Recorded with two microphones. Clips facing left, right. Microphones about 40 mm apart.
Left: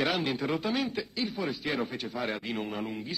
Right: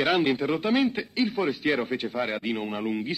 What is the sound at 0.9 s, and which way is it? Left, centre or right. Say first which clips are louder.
Speech: right 6 dB; right.